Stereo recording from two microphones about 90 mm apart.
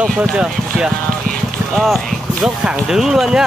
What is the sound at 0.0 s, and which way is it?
Speech, 10° right (ahead or behind).